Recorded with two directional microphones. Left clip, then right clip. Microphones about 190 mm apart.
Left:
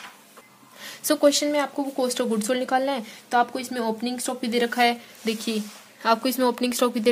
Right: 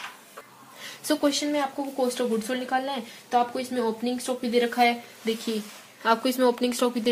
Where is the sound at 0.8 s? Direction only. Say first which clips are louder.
Left 5 dB; 40° left (ahead or behind).